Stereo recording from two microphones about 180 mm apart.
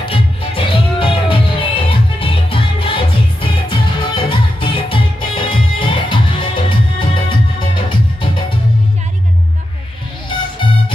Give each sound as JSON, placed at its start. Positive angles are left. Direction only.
{"t": 0.0, "sound": "music", "side_deg": 30}